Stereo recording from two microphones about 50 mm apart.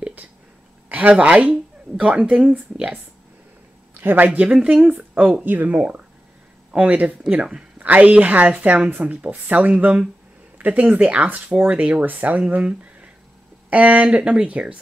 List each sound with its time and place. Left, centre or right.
0.8 s a sound: right
1.1 s speech: right
3.9 s speech: right